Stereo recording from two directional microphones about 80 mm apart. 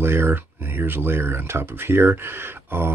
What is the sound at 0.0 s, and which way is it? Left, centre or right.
Speech, right.